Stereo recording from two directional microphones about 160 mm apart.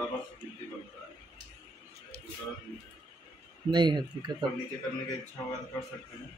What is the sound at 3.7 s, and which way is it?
Speech, 25° right (ahead or behind).